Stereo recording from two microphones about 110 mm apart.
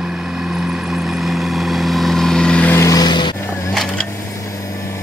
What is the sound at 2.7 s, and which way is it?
Vehicle, 30° left (ahead or behind).